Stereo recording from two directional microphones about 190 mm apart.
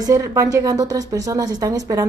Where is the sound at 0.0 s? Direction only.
20° right (ahead or behind).